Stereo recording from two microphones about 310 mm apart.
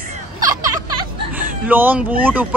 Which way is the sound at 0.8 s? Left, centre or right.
Centre.